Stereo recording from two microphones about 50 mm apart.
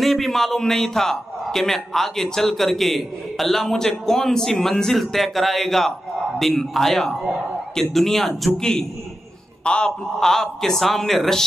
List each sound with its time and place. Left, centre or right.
0.0 s a man's voice: centre; by 9.9 s left
10.2 s a man's voice: centre